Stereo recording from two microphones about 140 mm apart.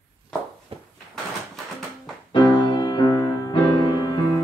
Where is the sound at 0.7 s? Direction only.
40° right (ahead or behind).